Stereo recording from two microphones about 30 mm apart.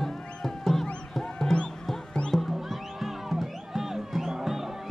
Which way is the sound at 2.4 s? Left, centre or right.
Centre.